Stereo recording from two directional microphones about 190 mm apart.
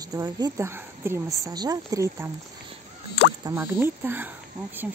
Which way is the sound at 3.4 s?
15° right (ahead or behind).